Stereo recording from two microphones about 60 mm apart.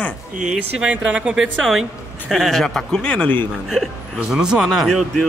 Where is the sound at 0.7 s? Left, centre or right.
Centre.